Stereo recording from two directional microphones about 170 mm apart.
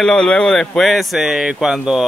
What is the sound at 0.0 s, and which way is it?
Speech, 5° left (ahead or behind).